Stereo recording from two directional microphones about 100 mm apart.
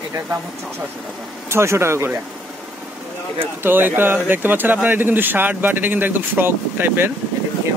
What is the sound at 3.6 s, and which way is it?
Speech, 20° right (ahead or behind).